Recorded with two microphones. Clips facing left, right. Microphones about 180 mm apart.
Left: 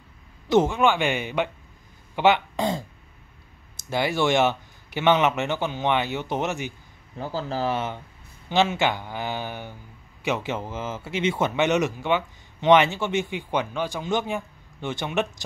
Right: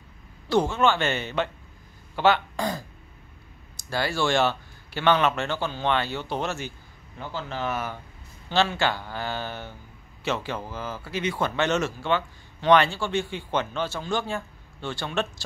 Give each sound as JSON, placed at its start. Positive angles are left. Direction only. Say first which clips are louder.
{"t": 0.5, "sound": "speech", "louder": "left 2 dB", "side_deg": 20}
{"t": 7.2, "sound": "speech", "louder": "left 4 dB", "side_deg": 35}